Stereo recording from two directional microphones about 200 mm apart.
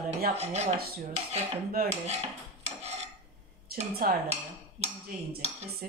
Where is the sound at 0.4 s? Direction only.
35° right (ahead or behind).